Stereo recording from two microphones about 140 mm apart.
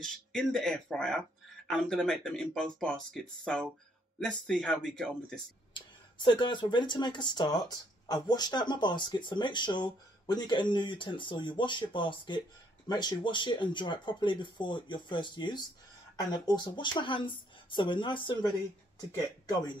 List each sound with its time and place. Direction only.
0.0 s speech: 5° left (ahead or behind)
5.7 s speech: 35° left (ahead or behind)